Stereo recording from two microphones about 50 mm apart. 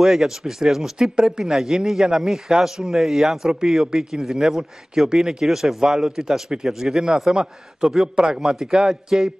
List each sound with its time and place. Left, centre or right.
0.0 s a man's voice: centre